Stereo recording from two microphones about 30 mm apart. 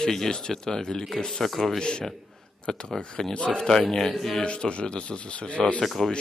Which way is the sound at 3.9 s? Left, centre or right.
Centre.